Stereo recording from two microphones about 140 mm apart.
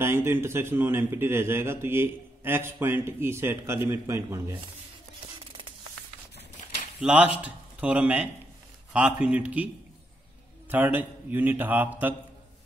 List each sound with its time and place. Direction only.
0.0 s a man's voice: 15° right (ahead or behind)
7.0 s a man's voice: 10° right (ahead or behind)
10.7 s a man's voice: 10° right (ahead or behind)